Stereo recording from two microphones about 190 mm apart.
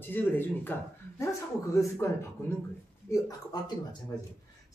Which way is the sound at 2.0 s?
15° left (ahead or behind).